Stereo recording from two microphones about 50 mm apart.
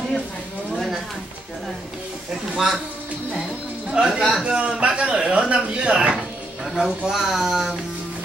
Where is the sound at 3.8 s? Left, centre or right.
Centre.